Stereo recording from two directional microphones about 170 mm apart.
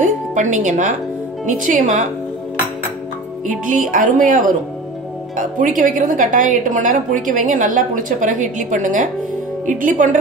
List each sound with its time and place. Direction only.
0.0 s a woman's voice: 45° right (ahead or behind)
3.4 s a woman's voice: 50° right (ahead or behind)